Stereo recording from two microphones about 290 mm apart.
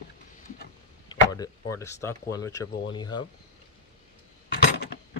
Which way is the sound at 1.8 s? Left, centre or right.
Centre.